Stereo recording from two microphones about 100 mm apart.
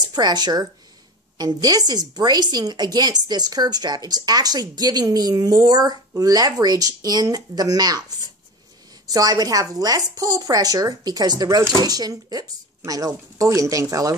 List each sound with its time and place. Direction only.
0.0 s a woman's voice: 45° right (ahead or behind)
9.0 s a woman's voice: 40° right (ahead or behind)